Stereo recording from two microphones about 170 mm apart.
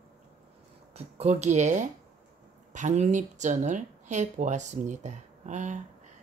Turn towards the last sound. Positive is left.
turn(degrees=-45)  # may be behind; listen again after turning